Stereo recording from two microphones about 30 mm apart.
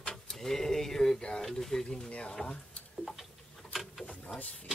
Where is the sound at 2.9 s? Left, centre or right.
Centre.